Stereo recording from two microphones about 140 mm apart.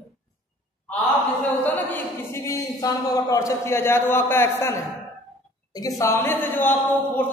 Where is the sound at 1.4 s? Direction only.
15° left (ahead or behind).